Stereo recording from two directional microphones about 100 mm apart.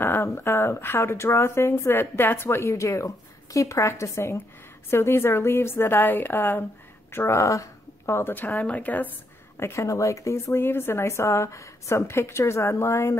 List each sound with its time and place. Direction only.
0.0 s a woman's voice: 25° left (ahead or behind)
9.6 s speech: 30° left (ahead or behind)